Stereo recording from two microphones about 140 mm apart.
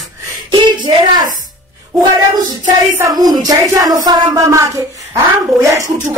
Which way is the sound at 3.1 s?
30° right (ahead or behind).